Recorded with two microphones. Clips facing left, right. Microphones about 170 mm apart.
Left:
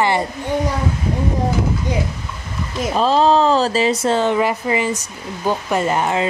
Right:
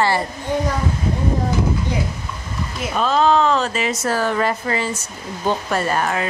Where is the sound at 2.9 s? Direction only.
30° left (ahead or behind).